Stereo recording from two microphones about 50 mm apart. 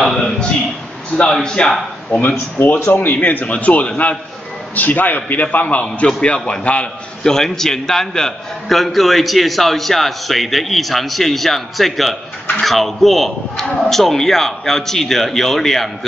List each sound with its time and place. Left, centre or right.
0.0 s a man's voice: centre
2.2 s a man's voice: left
7.2 s a man's voice: centre